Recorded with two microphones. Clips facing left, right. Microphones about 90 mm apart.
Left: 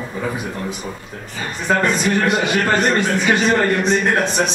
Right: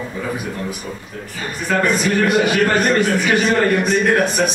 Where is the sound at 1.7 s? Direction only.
20° left (ahead or behind).